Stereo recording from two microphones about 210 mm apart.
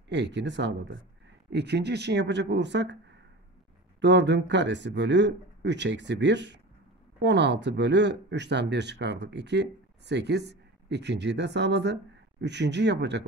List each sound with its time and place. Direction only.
0.1 s speech: 55° right (ahead or behind)